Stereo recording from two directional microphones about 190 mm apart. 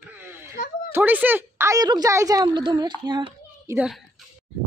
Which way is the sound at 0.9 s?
10° right (ahead or behind).